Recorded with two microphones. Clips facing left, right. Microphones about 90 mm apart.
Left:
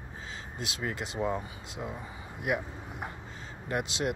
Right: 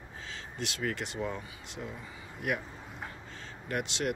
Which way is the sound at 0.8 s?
25° left (ahead or behind).